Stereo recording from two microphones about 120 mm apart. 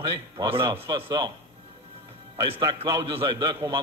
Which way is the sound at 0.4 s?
45° right (ahead or behind).